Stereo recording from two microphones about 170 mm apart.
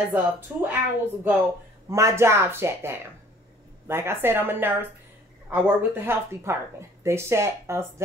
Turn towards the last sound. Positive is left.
turn(degrees=-15)  # may be behind; listen again after turning